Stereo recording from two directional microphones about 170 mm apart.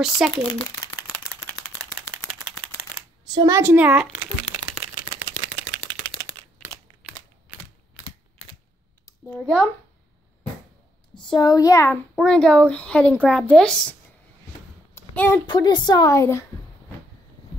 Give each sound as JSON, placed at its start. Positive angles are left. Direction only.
{"t": 0.0, "sound": "speech", "side_deg": 0}
{"t": 2.0, "sound": "a sound", "side_deg": 0}
{"t": 3.3, "sound": "crumpling", "side_deg": -25}
{"t": 11.2, "sound": "a woman's voice", "side_deg": 25}
{"t": 12.2, "sound": "speech", "side_deg": 5}
{"t": 15.0, "sound": "a sound", "side_deg": 15}
{"t": 15.4, "sound": "a woman's voice", "side_deg": 25}